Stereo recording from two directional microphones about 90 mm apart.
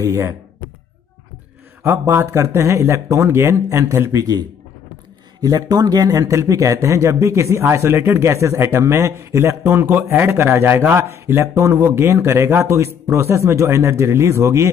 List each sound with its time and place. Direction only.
0.1 s speech: 30° right (ahead or behind)
1.8 s speech: 25° right (ahead or behind)
4.1 s a man's voice: 50° right (ahead or behind); by 14.7 s 35° right (ahead or behind)